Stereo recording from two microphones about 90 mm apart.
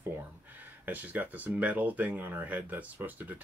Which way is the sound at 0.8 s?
20° right (ahead or behind).